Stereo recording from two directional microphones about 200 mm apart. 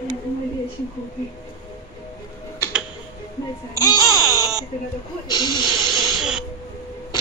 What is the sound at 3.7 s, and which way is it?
Speech, 20° left (ahead or behind).